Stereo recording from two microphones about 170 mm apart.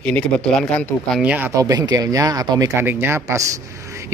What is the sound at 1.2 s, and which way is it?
Speech, 10° right (ahead or behind).